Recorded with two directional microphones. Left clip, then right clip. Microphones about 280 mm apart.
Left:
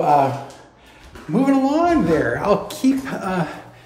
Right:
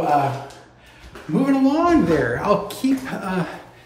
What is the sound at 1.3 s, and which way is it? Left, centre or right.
Speech, centre.